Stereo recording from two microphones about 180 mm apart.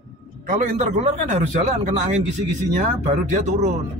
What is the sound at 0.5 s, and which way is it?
A man's voice, 40° right (ahead or behind).